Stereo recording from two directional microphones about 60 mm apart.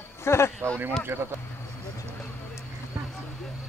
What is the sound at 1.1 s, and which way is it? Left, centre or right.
Speech, right.